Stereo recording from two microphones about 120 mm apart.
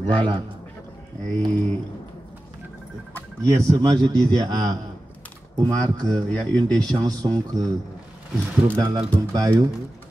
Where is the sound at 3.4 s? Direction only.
30° right (ahead or behind).